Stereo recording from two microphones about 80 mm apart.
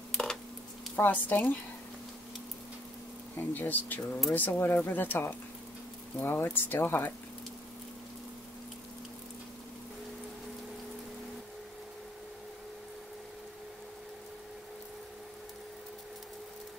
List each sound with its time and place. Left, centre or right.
0.1 s a sound: centre
0.9 s speech: left
3.3 s speech: left